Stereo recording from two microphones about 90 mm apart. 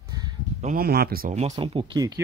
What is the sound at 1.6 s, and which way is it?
Speech, 90° right.